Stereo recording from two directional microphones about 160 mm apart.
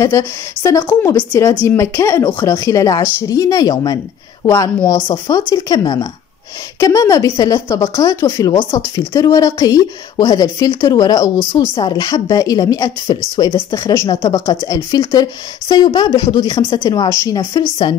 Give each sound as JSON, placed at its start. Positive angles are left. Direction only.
{"t": 0.0, "sound": "a woman's voice", "side_deg": 20}